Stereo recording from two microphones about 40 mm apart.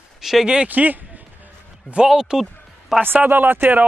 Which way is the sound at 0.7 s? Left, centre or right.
Right.